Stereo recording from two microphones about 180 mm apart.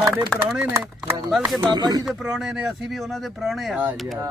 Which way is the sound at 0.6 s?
15° right (ahead or behind).